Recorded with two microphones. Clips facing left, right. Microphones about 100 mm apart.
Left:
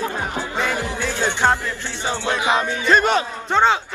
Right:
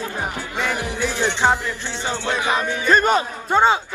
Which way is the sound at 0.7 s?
15° right (ahead or behind).